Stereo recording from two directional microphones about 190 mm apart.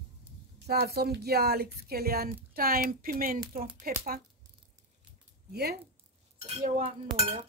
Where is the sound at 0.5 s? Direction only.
60° right (ahead or behind).